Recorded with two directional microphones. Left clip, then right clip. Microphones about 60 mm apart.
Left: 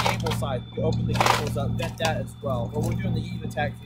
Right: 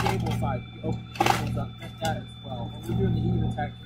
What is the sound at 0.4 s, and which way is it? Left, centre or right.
Music, left.